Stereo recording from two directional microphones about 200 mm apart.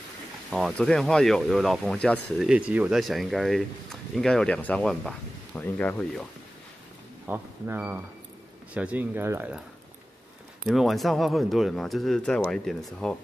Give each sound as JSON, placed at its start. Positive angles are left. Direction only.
{"t": 0.5, "sound": "speech", "side_deg": 0}
{"t": 7.2, "sound": "speech", "side_deg": -10}
{"t": 10.7, "sound": "speech", "side_deg": 0}